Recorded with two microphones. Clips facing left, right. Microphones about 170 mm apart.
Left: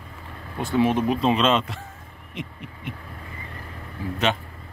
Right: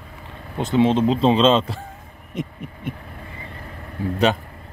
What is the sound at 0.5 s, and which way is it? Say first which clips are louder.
Speech: right 3 dB; 20° right (ahead or behind).